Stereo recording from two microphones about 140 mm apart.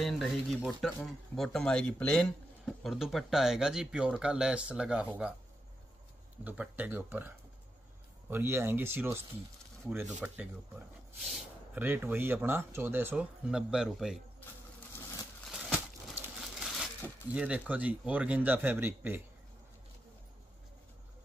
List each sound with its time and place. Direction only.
0.0 s speech: centre (ahead or behind)
6.4 s speech: 10° right (ahead or behind)
11.2 s a sound: centre (ahead or behind)
11.8 s speech: 15° right (ahead or behind)
14.4 s coin: 15° left (ahead or behind)
15.4 s crumpling: 5° right (ahead or behind)
16.3 s a sound: 5° right (ahead or behind)
17.3 s speech: 10° right (ahead or behind)